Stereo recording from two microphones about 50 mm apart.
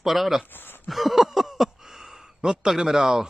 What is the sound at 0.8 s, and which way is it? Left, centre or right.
Speech, centre.